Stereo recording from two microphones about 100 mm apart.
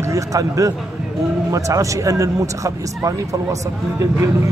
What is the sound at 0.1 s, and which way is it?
A man's voice, 35° right (ahead or behind).